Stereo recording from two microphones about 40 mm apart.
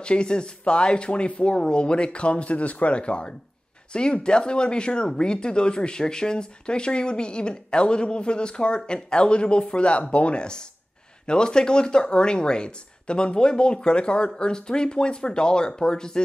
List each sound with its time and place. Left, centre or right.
0.0 s speech: left